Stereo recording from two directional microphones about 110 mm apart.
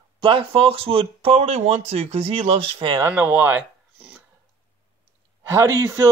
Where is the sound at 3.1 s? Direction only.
15° right (ahead or behind).